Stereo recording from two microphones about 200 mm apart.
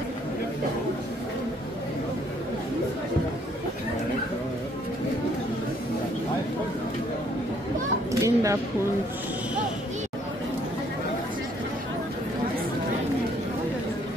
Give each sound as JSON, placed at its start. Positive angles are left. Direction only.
{"t": 8.1, "sound": "children playing", "side_deg": -15}